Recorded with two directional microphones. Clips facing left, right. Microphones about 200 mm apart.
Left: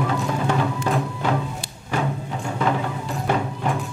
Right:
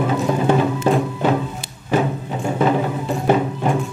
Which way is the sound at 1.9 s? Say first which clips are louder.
Right 6 dB; 25° right (ahead or behind).